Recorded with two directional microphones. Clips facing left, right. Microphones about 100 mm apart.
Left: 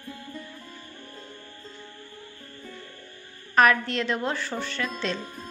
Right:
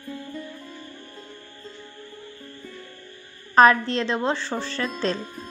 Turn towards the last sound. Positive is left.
turn(degrees=-35)  # may be behind; listen again after turning